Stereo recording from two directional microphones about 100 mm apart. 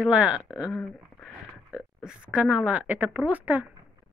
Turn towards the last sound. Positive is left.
turn(degrees=-15)  # may be behind; listen again after turning